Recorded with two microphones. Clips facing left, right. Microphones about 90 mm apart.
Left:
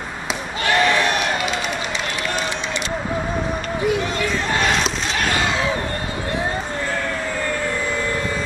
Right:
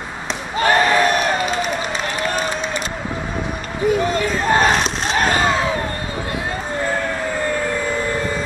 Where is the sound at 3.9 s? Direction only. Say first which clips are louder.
Right 5 dB; 40° right (ahead or behind).